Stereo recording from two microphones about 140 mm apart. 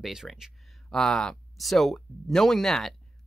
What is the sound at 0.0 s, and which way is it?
Speech, centre (ahead or behind).